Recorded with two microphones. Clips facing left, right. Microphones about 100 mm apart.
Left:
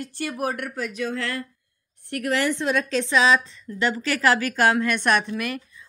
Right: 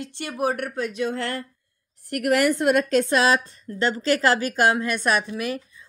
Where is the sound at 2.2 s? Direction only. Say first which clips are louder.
Right 4 dB; 55° right (ahead or behind).